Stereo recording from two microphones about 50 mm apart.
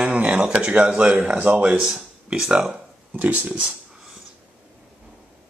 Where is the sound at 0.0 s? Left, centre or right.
Centre.